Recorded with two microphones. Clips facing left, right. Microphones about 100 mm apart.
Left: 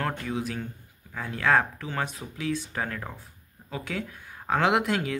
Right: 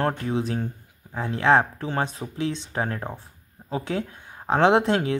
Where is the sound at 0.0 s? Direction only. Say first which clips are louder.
Right 5 dB; 30° right (ahead or behind).